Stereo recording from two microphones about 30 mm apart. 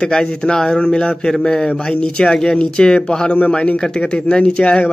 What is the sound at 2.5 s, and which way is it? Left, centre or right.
Speech, left.